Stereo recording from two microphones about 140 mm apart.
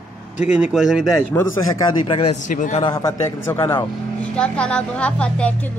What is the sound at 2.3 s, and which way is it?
Speech, 65° left (ahead or behind).